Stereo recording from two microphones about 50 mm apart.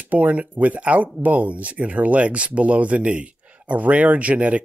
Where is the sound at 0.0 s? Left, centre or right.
Right.